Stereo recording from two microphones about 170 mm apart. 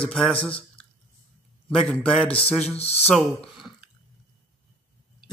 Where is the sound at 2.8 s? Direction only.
40° left (ahead or behind).